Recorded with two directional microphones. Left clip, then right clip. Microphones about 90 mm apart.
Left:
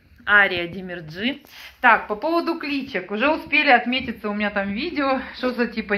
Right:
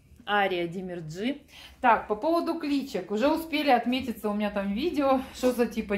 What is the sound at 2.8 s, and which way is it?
Speech, 15° right (ahead or behind).